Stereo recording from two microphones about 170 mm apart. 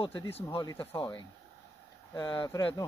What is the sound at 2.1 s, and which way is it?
Speech, 25° left (ahead or behind).